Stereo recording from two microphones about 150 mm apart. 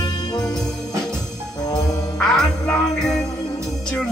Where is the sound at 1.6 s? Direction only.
25° left (ahead or behind).